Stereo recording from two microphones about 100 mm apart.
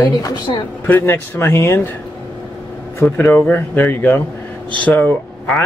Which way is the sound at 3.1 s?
20° left (ahead or behind).